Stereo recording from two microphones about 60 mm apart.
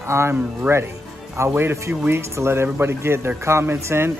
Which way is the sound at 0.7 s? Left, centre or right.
Right.